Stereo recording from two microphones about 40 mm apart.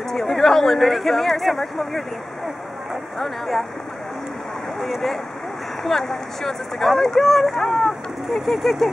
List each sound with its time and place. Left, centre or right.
0.1 s speech: centre
2.9 s a sound: centre
4.7 s speech: centre